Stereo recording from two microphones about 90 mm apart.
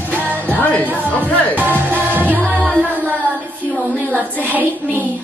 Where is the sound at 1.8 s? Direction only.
20° right (ahead or behind).